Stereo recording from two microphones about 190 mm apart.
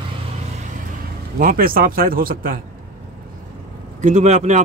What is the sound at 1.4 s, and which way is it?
Speech, 50° right (ahead or behind).